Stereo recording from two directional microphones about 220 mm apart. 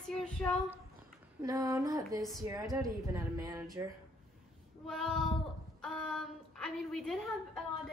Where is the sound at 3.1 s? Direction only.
15° right (ahead or behind).